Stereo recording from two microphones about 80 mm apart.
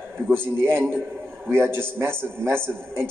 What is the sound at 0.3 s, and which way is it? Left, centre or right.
A man's voice, right.